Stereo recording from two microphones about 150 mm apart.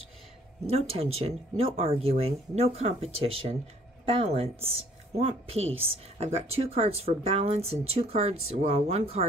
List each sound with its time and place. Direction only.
0.7 s speech: 40° right (ahead or behind)